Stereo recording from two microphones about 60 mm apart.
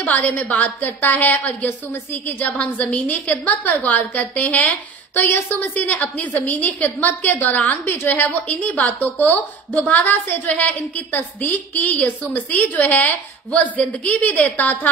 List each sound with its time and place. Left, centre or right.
0.0 s a woman's voice: left